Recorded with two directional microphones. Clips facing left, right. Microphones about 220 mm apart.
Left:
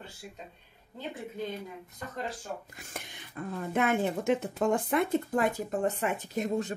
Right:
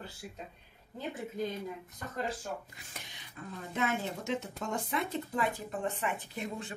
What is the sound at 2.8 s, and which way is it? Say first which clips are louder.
Speech: left 6 dB; 50° left (ahead or behind).